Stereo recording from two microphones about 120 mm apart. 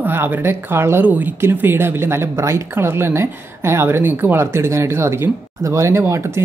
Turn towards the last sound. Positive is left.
turn(degrees=-20)  # may be behind; listen again after turning